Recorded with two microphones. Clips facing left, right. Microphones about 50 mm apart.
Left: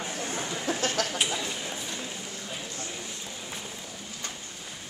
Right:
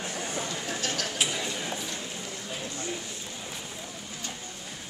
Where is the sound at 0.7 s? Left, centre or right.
Left.